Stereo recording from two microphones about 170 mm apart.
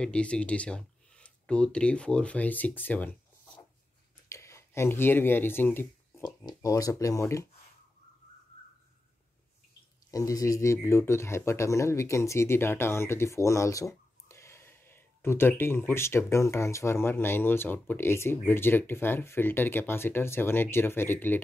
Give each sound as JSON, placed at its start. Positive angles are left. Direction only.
{"t": 0.0, "sound": "speech", "side_deg": 5}
{"t": 4.3, "sound": "a sound", "side_deg": 15}
{"t": 6.2, "sound": "speech", "side_deg": 20}
{"t": 10.1, "sound": "speech", "side_deg": 20}